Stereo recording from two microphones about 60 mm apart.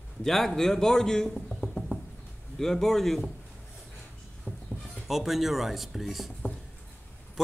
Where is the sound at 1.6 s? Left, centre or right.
Centre.